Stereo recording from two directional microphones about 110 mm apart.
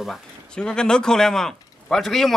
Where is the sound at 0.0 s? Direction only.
5° left (ahead or behind).